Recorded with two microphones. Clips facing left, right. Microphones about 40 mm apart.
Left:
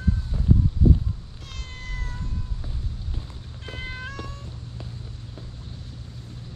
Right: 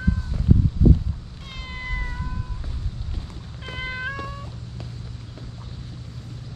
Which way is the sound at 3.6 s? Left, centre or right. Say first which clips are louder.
Right 5 dB; centre.